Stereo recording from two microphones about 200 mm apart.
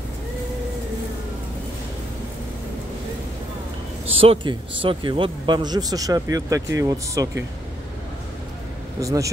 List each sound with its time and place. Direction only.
4.0 s a man's voice: 30° right (ahead or behind)
9.0 s speech: 15° right (ahead or behind)